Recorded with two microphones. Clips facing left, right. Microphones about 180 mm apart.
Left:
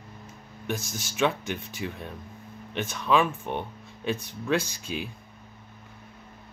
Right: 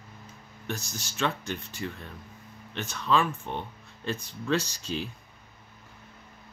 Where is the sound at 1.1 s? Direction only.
15° left (ahead or behind).